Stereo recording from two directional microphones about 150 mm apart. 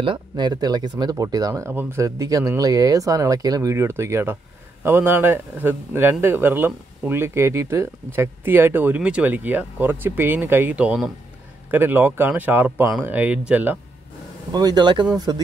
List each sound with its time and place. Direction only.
0.0 s speech: 30° right (ahead or behind); by 13.7 s 10° right (ahead or behind)
14.5 s speech: 30° right (ahead or behind)